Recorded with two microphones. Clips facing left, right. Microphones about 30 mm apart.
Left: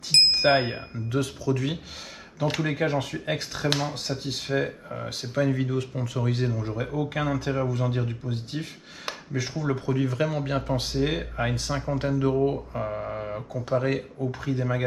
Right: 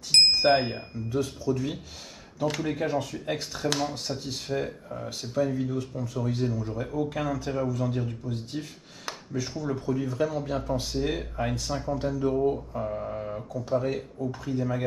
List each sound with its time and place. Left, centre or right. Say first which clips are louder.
0.4 s speech: left 1 dB; left
1.2 s speech: left 1 dB; left
2.4 s speech: left 2 dB; left
3.6 s speech: left 1 dB; left
5.5 s speech: left 3 dB; left
6.1 s speech: left 1 dB; left
6.5 s speech: left 1 dB; left
6.8 s speech: left 2 dB; left
9.5 s speech: left 3 dB; left
11.0 s speech: left 2 dB; left
12.4 s speech: even; left
13.5 s speech: left 2 dB; left